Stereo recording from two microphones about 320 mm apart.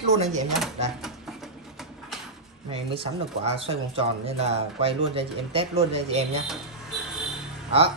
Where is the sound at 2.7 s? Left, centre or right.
Centre.